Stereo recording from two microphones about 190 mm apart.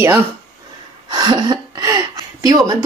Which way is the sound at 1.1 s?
20° right (ahead or behind).